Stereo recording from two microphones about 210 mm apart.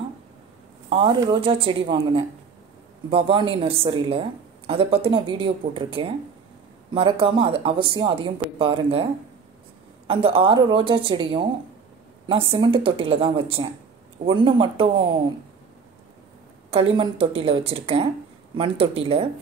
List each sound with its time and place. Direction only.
0.8 s speech: 25° right (ahead or behind)
10.0 s speech: 25° right (ahead or behind)
16.7 s speech: 25° right (ahead or behind)